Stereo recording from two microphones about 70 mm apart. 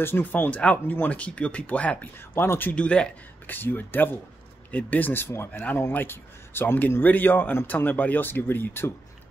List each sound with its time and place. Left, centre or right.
0.0 s speech: left
2.3 s speech: left
2.7 s speech: centre
3.4 s speech: left